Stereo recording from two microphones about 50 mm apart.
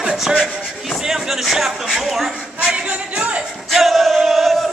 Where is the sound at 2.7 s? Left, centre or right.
Right.